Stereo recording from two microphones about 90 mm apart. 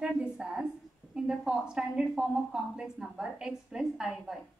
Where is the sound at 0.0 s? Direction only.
10° right (ahead or behind).